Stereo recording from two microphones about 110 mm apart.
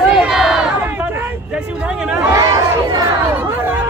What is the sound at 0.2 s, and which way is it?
Crowd, 5° right (ahead or behind).